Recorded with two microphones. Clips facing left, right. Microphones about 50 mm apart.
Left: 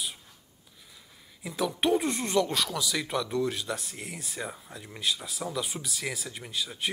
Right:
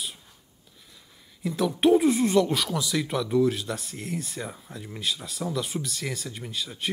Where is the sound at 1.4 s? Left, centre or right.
Centre.